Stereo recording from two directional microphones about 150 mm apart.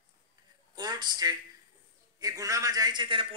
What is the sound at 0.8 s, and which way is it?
A man's voice, 30° right (ahead or behind).